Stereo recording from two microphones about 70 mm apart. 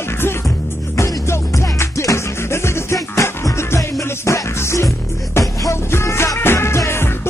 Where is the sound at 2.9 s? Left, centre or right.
Left.